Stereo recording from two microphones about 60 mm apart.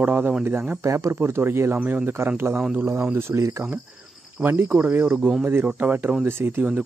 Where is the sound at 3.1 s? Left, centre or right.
Right.